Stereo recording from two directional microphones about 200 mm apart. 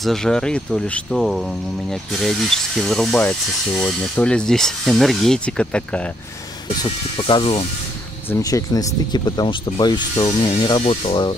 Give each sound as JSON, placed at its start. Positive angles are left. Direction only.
{"t": 0.0, "sound": "speech", "side_deg": 0}
{"t": 6.8, "sound": "speech", "side_deg": 25}
{"t": 8.3, "sound": "speech", "side_deg": 15}